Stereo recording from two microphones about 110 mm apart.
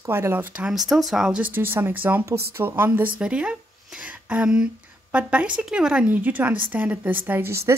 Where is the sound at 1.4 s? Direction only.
20° right (ahead or behind).